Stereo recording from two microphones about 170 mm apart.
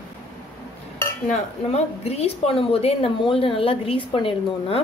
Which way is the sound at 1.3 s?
40° left (ahead or behind).